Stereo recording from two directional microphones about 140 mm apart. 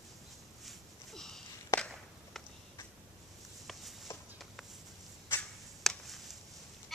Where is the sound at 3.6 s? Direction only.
Centre (ahead or behind).